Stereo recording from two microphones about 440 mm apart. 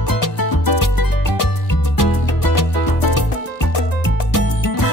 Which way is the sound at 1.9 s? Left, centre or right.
Left.